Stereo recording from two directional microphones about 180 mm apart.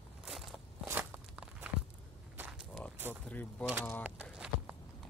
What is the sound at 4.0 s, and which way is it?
Walk, 10° right (ahead or behind).